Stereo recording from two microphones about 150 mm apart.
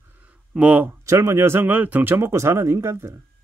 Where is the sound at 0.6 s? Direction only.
10° right (ahead or behind).